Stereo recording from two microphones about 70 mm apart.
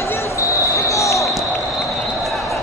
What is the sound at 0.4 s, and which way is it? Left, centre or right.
Basketball bounce, left.